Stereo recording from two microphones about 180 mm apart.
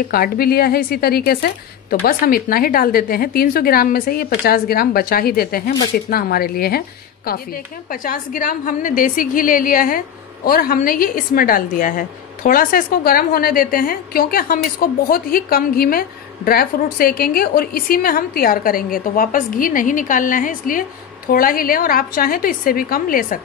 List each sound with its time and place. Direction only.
0.1 s a woman's voice: 55° left (ahead or behind)
7.9 s a woman's voice: 50° left (ahead or behind)